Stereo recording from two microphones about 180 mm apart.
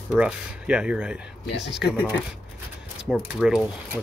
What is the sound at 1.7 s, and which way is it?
Speech, 70° left (ahead or behind).